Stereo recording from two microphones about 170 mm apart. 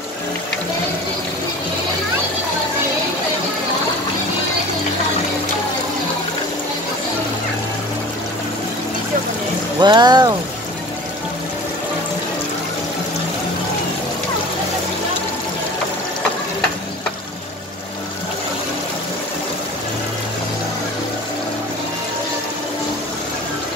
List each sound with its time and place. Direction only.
9.8 s speech: 25° right (ahead or behind)